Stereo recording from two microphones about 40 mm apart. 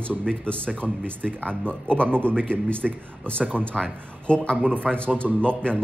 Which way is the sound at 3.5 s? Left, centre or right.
Left.